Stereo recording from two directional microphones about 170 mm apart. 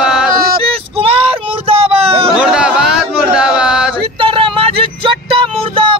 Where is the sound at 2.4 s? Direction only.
5° right (ahead or behind).